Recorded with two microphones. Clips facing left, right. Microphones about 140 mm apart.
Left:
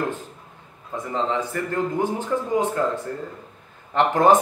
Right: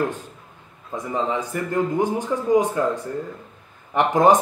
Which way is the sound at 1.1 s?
15° right (ahead or behind).